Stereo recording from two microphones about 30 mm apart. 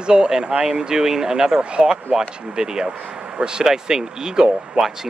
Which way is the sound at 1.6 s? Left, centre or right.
Right.